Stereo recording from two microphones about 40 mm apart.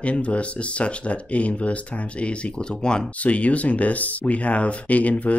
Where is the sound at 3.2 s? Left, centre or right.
Left.